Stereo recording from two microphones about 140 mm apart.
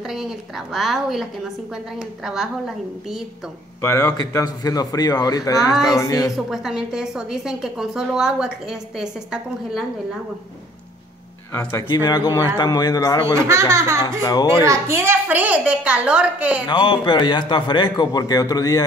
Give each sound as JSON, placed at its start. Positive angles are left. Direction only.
{"t": 0.0, "sound": "a woman's voice", "side_deg": 0}
{"t": 3.8, "sound": "a man's voice", "side_deg": 25}
{"t": 6.3, "sound": "a woman's voice", "side_deg": -5}
{"t": 11.5, "sound": "a man's voice", "side_deg": 20}
{"t": 13.3, "sound": "speech", "side_deg": -20}
{"t": 14.2, "sound": "a man's voice", "side_deg": 30}
{"t": 14.6, "sound": "a woman's voice", "side_deg": -20}
{"t": 16.6, "sound": "a man's voice", "side_deg": 30}